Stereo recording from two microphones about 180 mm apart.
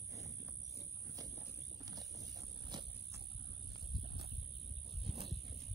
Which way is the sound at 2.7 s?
25° right (ahead or behind).